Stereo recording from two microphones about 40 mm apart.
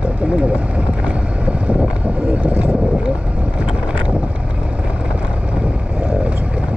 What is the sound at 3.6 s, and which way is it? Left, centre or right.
Boat, right.